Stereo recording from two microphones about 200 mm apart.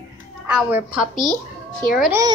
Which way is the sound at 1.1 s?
40° left (ahead or behind).